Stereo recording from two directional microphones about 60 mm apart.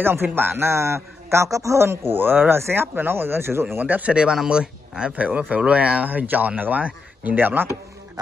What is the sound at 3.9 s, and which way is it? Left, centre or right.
Speech, right.